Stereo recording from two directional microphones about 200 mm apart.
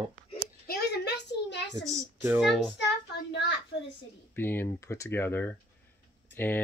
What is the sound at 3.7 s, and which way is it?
Speech, 65° left (ahead or behind).